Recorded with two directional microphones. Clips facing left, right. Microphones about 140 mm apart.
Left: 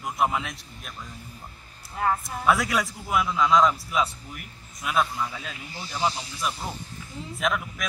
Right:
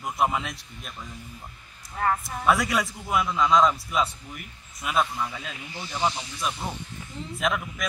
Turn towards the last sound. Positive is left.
turn(degrees=0)  # may be behind; listen again after turning